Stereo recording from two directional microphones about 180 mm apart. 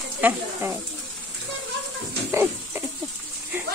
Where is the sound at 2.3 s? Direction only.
15° right (ahead or behind).